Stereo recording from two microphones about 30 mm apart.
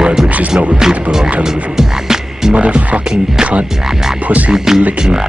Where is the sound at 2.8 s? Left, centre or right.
Right.